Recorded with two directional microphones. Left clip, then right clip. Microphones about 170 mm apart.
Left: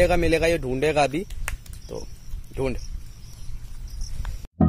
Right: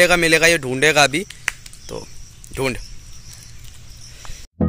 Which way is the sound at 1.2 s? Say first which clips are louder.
Right 10 dB; 50° left (ahead or behind).